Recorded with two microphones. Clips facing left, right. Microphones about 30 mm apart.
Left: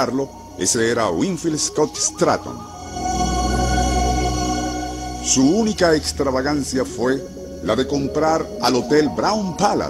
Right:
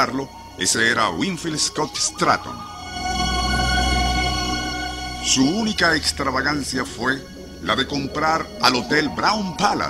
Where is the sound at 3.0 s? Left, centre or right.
Right.